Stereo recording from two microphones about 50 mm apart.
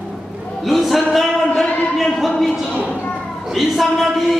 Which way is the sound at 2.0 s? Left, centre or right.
Centre.